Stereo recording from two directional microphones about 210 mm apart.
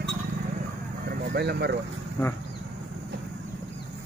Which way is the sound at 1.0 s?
50° right (ahead or behind).